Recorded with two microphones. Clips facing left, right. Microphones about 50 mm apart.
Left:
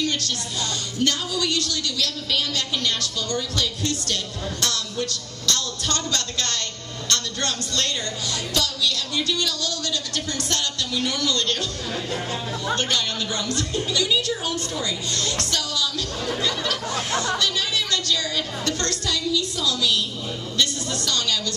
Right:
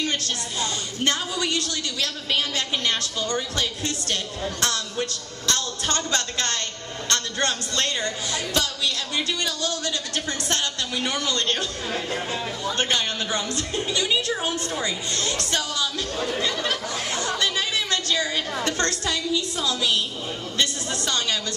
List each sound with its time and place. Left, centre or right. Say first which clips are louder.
0.0 s a woman's voice: left 1 dB; right
12.7 s a woman's voice: even; right
16.9 s speech: left 3 dB; left
17.4 s a woman's voice: even; right